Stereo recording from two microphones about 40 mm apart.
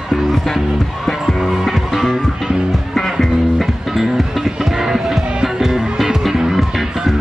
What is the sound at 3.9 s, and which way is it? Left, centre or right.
Music, centre.